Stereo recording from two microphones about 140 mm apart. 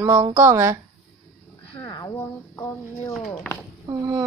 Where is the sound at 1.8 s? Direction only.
25° left (ahead or behind).